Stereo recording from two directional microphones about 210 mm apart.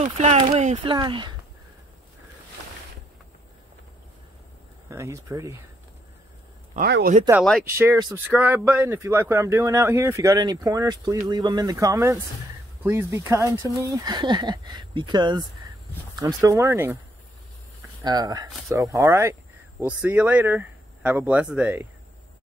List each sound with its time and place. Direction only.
0.0 s speech: 30° right (ahead or behind)
4.8 s speech: 15° right (ahead or behind)
6.7 s speech: 45° right (ahead or behind)
7.7 s speech: 15° right (ahead or behind)
18.0 s speech: 20° right (ahead or behind)